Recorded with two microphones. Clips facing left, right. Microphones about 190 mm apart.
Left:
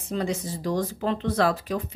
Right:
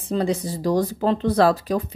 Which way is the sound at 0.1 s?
35° right (ahead or behind).